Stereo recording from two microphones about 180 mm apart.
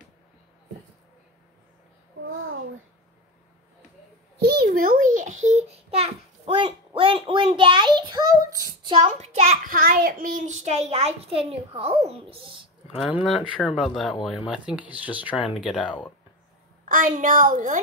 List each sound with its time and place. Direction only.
4.4 s babbling: 60° right (ahead or behind); by 12.0 s 35° right (ahead or behind)
12.1 s a child's voice: 30° right (ahead or behind)
12.9 s speech: centre (ahead or behind)
16.8 s a woman's voice: 45° right (ahead or behind)